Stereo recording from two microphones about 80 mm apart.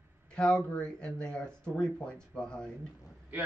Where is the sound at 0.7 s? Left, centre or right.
Centre.